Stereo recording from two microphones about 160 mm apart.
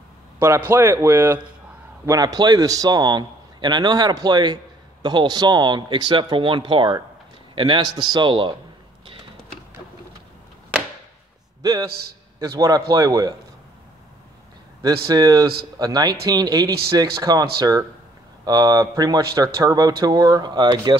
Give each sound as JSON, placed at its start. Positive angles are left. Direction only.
{"t": 0.4, "sound": "a man's voice", "side_deg": -15}
{"t": 12.4, "sound": "speech", "side_deg": -20}
{"t": 15.0, "sound": "speech", "side_deg": -20}